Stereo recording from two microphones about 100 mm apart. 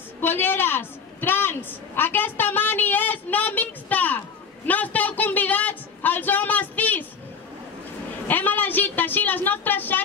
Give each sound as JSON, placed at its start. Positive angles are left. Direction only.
{"t": 0.2, "sound": "a woman's voice", "side_deg": 20}
{"t": 8.3, "sound": "a woman's voice", "side_deg": 20}